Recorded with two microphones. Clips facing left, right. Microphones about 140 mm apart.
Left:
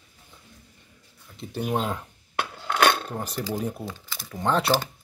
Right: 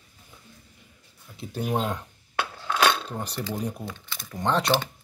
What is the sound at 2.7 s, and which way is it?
Cutlery, 55° left (ahead or behind).